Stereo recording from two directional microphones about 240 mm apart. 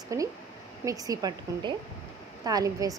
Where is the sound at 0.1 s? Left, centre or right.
Centre.